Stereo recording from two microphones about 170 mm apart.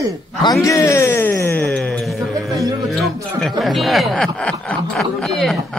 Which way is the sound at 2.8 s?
Centre (ahead or behind).